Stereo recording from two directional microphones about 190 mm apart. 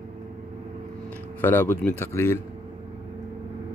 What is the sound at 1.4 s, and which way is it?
Speech, 10° left (ahead or behind).